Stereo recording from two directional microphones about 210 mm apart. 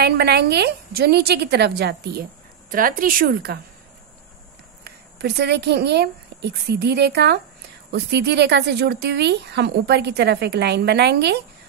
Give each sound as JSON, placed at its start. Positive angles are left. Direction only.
{"t": 0.0, "sound": "speech", "side_deg": -50}
{"t": 2.7, "sound": "speech", "side_deg": -40}
{"t": 4.8, "sound": "speech", "side_deg": -50}